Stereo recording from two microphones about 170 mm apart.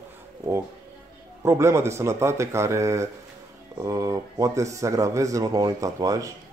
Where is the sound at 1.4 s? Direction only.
15° right (ahead or behind).